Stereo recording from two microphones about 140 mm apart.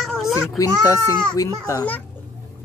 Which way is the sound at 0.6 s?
25° left (ahead or behind).